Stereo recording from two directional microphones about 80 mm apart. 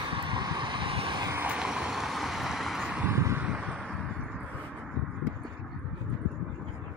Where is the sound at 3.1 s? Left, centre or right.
Right.